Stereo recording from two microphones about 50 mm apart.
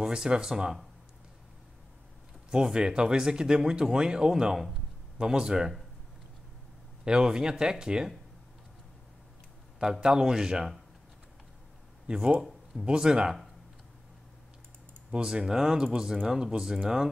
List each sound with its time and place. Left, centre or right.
0.0 s speech: centre
2.5 s speech: centre
7.1 s speech: centre
9.8 s speech: centre
12.1 s speech: centre
15.0 s speech: centre